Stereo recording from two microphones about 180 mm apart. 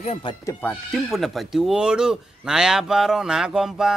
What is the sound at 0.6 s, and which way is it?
Speech, 5° left (ahead or behind).